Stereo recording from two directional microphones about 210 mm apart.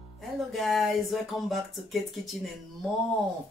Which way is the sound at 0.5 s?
Centre (ahead or behind).